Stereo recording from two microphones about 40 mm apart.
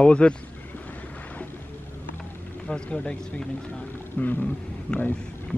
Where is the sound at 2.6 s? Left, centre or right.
Left.